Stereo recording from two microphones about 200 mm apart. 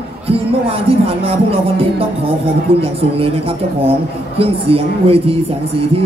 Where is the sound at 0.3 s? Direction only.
30° right (ahead or behind).